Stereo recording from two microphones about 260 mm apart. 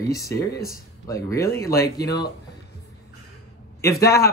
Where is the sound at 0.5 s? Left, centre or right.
Left.